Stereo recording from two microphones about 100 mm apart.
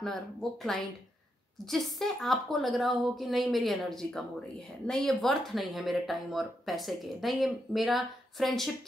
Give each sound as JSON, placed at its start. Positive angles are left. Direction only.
{"t": 0.0, "sound": "a woman's voice", "side_deg": 5}